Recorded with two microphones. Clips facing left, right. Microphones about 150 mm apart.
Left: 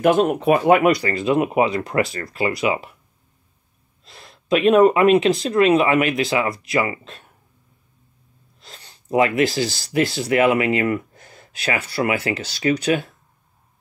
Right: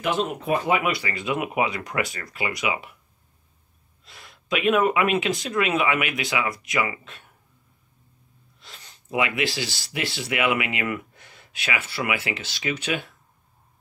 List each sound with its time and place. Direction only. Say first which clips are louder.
0.0 s speech: left 9 dB; 55° left (ahead or behind)
0.8 s speech: left 9 dB; 40° left (ahead or behind)
4.0 s speech: left 4 dB; 35° left (ahead or behind)
8.5 s speech: left 3 dB; 35° left (ahead or behind)